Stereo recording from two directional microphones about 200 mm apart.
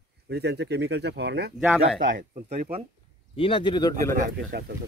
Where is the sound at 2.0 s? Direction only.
40° right (ahead or behind).